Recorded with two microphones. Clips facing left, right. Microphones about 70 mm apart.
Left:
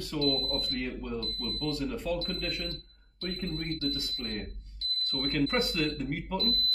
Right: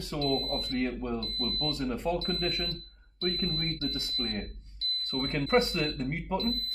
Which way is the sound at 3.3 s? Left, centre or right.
Centre.